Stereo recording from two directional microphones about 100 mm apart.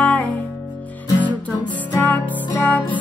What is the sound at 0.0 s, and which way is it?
Music, 15° left (ahead or behind).